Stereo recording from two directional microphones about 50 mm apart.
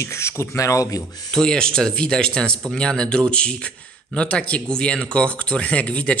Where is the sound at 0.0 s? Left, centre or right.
Left.